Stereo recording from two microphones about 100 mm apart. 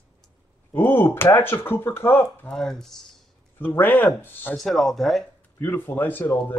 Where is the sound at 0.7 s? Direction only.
20° left (ahead or behind).